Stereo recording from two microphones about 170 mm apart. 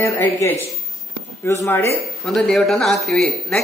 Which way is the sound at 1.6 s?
15° left (ahead or behind).